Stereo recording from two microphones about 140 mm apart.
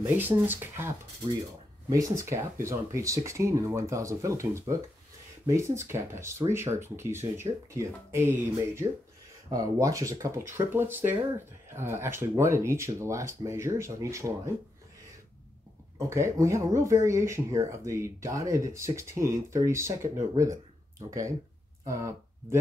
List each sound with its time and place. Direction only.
0.0 s speech: 15° right (ahead or behind)
16.1 s speech: 20° right (ahead or behind)